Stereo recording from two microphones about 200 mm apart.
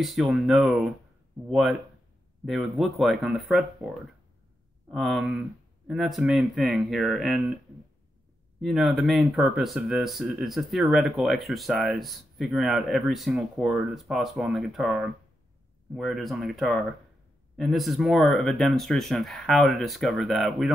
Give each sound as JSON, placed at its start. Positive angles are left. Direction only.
{"t": 0.0, "sound": "speech", "side_deg": 0}
{"t": 8.5, "sound": "speech", "side_deg": 0}